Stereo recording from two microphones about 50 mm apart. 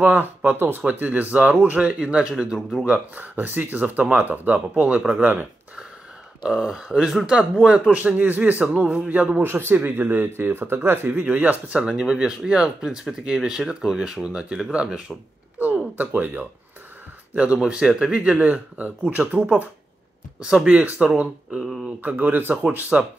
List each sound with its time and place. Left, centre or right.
0.0 s speech: right; by 2.6 s centre
2.8 s speech: right
6.4 s speech: centre
7.9 s speech: right
9.4 s speech: right
11.2 s speech: right
16.0 s speech: right
17.6 s speech: centre
18.4 s speech: right
20.6 s speech: right